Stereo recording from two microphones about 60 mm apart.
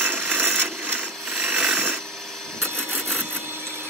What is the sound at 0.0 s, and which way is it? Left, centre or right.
Wood, right.